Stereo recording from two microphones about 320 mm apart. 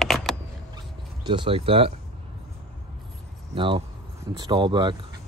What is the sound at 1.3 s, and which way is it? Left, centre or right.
Speech, centre.